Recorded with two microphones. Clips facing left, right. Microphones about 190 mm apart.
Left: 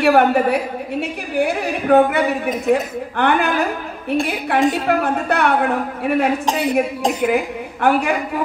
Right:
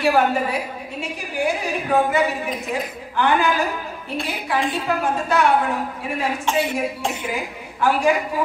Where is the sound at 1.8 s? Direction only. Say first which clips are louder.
Left 6 dB; 60° left (ahead or behind).